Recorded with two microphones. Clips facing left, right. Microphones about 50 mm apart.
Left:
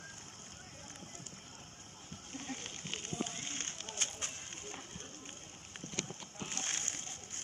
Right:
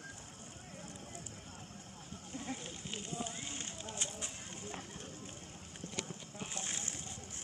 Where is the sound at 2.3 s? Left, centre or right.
Left.